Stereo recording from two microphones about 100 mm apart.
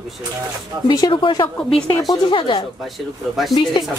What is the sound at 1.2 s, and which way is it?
A woman's voice, 60° left (ahead or behind).